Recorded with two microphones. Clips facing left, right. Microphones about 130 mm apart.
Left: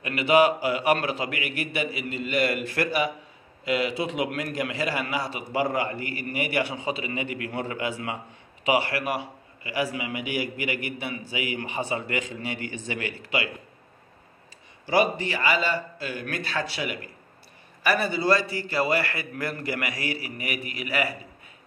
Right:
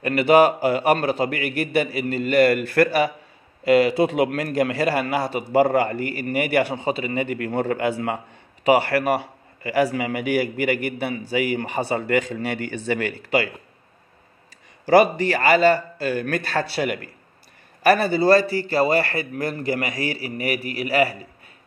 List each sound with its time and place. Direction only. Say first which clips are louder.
0.0 s a man's voice: right 5 dB; 50° right (ahead or behind)
14.9 s a man's voice: right 7 dB; 55° right (ahead or behind); by 21.1 s 35° right (ahead or behind)